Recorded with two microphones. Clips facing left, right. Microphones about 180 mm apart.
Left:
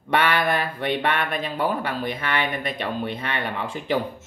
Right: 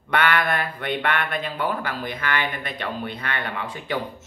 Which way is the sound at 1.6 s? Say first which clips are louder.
Left 3 dB; 25° left (ahead or behind).